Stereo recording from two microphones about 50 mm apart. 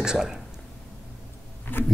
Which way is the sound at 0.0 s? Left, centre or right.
Centre.